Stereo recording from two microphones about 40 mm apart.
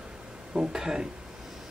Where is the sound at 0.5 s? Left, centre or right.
Centre.